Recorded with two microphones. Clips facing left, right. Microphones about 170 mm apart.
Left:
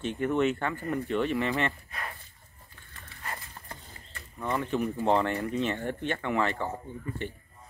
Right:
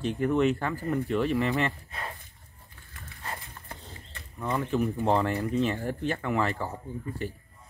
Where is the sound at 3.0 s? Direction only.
20° right (ahead or behind).